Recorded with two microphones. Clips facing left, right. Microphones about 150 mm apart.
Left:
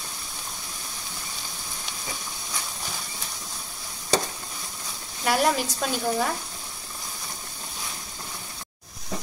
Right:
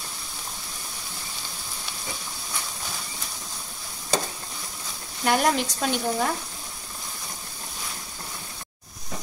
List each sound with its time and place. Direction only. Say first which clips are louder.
5.2 s speech: right 1 dB; 5° left (ahead or behind)